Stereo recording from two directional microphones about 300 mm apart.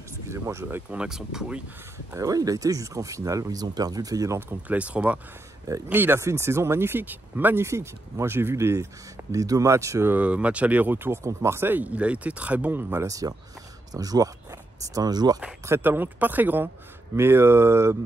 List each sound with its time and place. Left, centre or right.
0.3 s speech: centre